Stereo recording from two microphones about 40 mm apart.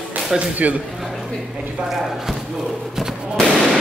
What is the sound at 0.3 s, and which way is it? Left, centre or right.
Speech, centre.